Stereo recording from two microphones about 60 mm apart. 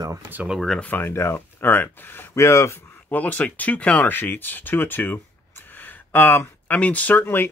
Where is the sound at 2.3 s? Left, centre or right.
Left.